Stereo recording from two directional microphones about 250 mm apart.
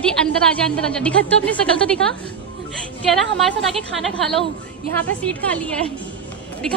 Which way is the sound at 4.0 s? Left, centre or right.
Centre.